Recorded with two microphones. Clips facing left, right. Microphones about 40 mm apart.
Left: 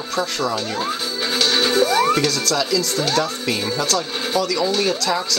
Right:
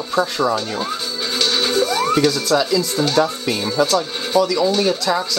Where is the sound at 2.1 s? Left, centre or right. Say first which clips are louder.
Right 3 dB; centre.